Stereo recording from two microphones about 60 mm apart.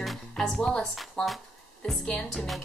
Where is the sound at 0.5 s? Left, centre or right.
Centre.